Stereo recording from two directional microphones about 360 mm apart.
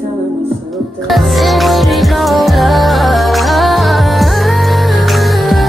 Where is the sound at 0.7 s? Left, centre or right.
Centre.